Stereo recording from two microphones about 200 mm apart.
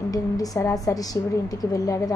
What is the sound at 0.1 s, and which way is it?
A woman's voice, 15° left (ahead or behind).